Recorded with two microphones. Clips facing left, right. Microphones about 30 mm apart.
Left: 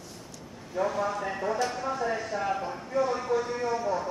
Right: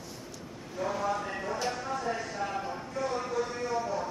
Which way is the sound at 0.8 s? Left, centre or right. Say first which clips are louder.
Left 3 dB; centre.